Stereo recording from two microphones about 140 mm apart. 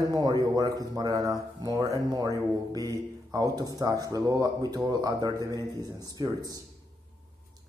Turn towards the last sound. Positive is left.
turn(degrees=-25)  # may be behind; listen again after turning